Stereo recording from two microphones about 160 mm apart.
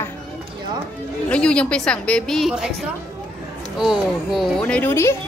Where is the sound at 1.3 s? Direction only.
5° left (ahead or behind).